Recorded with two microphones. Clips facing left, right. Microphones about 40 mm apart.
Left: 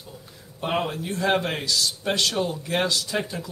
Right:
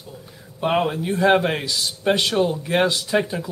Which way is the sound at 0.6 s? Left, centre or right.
Centre.